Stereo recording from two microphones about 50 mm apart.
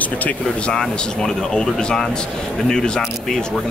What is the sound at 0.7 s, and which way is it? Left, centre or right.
Speech, centre.